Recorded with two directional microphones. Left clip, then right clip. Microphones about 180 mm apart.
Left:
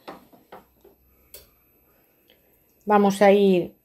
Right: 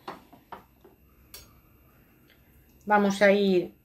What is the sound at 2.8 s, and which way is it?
Speech, 35° left (ahead or behind).